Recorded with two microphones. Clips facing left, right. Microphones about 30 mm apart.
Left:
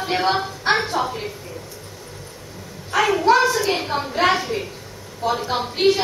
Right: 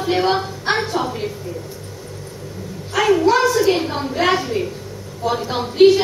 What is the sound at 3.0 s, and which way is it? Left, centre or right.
A woman's voice, centre.